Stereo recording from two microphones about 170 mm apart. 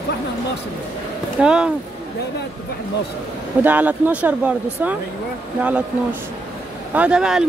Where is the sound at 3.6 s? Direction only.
10° right (ahead or behind).